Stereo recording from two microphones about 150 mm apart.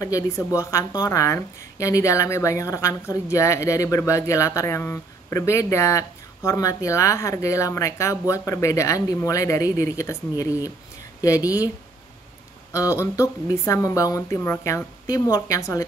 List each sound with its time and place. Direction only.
0.0 s a woman's voice: 20° left (ahead or behind)
12.7 s a woman's voice: 20° left (ahead or behind)